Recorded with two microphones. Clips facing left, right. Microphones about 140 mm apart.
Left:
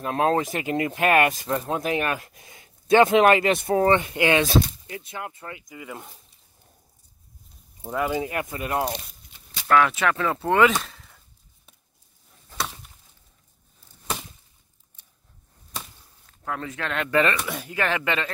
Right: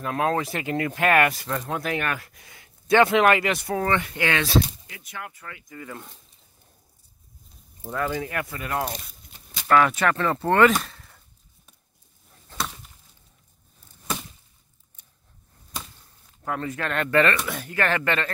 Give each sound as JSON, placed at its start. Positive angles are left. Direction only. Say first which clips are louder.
{"t": 0.0, "sound": "speech", "louder": "left 2 dB", "side_deg": 30}
{"t": 5.7, "sound": "speech", "louder": "even", "side_deg": 10}
{"t": 7.8, "sound": "speech", "louder": "left 2 dB", "side_deg": 15}
{"t": 9.6, "sound": "speech", "louder": "even", "side_deg": 0}
{"t": 16.3, "sound": "speech", "louder": "right 2 dB", "side_deg": 0}